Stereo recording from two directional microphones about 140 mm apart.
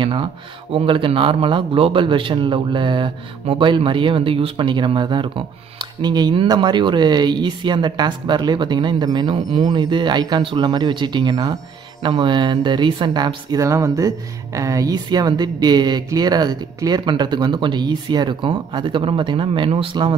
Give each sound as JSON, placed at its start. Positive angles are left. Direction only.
{"t": 0.0, "sound": "speech", "side_deg": -40}